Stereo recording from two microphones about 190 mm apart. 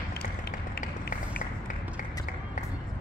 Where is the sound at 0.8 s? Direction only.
50° left (ahead or behind).